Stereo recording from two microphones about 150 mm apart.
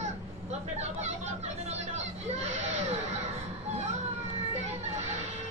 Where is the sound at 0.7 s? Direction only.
45° right (ahead or behind).